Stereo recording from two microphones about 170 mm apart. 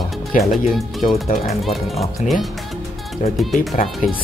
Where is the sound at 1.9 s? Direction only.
40° left (ahead or behind).